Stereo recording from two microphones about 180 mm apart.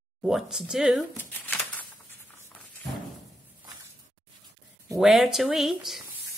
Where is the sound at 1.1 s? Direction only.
10° left (ahead or behind).